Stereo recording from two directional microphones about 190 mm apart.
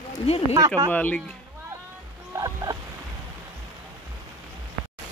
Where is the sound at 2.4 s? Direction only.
20° right (ahead or behind).